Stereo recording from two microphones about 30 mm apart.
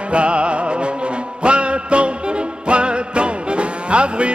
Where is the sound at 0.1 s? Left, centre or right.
Right.